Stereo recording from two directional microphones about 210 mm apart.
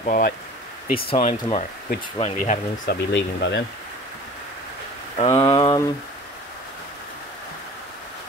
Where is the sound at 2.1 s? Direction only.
30° left (ahead or behind).